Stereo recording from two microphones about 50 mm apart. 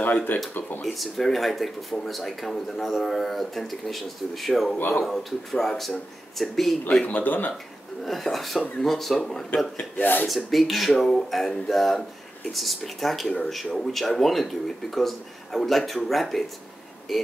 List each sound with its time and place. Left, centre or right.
0.0 s speech: left
0.8 s speech: centre
7.1 s speech: left
8.0 s speech: centre
9.9 s speech: left
10.2 s speech: centre